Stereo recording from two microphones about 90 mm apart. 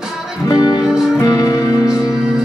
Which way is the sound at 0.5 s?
45° left (ahead or behind).